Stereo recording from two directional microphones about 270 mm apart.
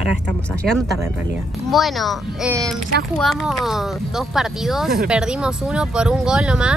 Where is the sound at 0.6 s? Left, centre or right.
Centre.